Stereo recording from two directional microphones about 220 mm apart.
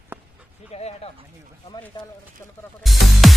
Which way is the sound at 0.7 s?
30° left (ahead or behind).